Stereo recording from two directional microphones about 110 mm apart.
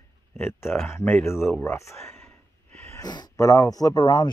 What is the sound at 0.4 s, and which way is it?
Speech, 20° left (ahead or behind).